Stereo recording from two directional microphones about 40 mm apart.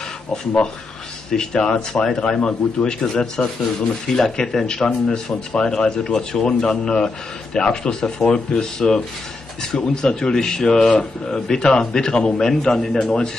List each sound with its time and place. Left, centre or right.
1.3 s speech: centre